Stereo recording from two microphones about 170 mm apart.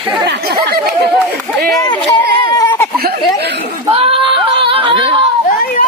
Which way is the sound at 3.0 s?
70° right (ahead or behind).